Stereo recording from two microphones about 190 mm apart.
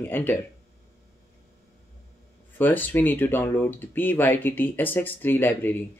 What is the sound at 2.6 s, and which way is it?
Speech, 10° left (ahead or behind).